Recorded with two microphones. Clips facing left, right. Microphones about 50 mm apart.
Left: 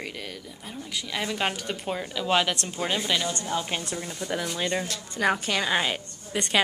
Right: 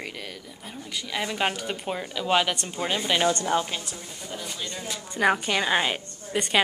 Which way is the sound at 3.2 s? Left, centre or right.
Right.